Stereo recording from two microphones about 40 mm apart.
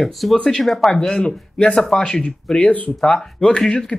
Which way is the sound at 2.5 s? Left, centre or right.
Left.